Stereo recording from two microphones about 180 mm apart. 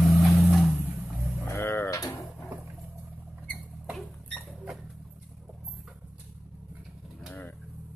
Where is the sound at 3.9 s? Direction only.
Centre (ahead or behind).